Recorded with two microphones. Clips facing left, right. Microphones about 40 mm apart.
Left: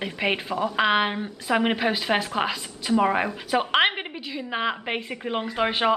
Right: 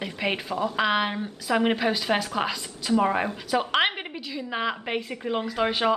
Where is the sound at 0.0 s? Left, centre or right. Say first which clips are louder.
Left 2 dB; centre.